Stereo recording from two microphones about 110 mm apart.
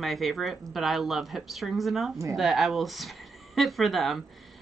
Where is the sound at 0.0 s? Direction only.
Centre (ahead or behind).